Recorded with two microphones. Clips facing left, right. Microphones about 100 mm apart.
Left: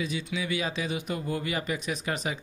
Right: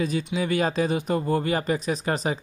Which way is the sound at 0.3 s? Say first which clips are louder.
Right 7 dB; 45° right (ahead or behind).